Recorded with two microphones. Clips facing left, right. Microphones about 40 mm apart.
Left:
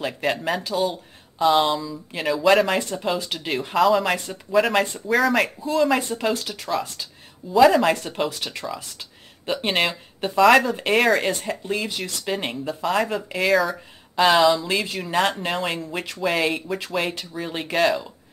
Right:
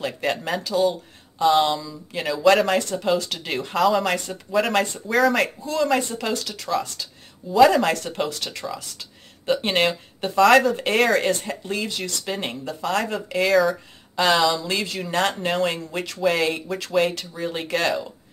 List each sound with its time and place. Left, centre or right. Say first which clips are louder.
0.0 s speech: left 1 dB; centre
7.5 s speech: even; centre